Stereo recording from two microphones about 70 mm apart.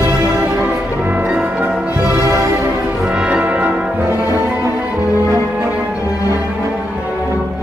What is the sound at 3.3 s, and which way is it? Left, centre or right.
Brass instrument, right.